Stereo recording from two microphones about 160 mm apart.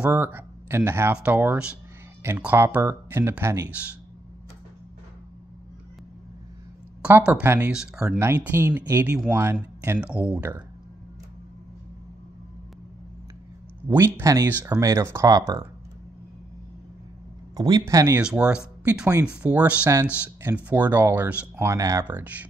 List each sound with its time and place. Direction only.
0.0 s speech: 15° right (ahead or behind)
7.0 s speech: 10° right (ahead or behind)
13.8 s speech: 10° right (ahead or behind)
17.6 s speech: 25° right (ahead or behind)
22.0 s speech: 10° right (ahead or behind)